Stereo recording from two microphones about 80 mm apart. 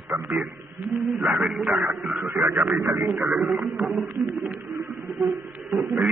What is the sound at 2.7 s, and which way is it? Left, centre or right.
Speech, right.